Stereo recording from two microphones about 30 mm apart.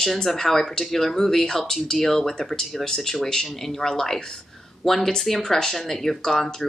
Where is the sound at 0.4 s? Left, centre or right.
Centre.